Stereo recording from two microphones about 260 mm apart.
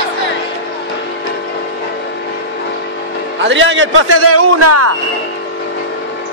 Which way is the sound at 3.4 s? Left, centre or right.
Right.